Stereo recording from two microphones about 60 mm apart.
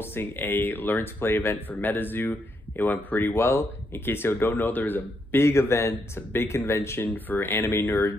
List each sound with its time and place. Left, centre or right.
0.0 s speech: left
5.4 s speech: left
7.1 s speech: left
7.6 s speech: left